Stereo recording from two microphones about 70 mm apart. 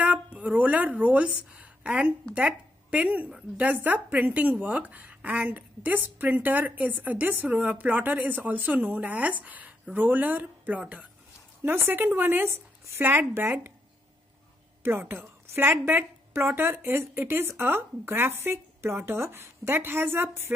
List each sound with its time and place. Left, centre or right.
0.0 s a woman's voice: right
11.6 s a woman's voice: right
14.8 s a woman's voice: right